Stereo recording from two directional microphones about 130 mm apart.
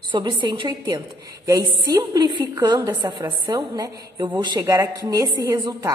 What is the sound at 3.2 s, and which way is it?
A woman's voice, 30° right (ahead or behind).